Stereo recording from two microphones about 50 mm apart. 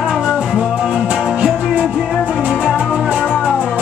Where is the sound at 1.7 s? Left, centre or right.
Right.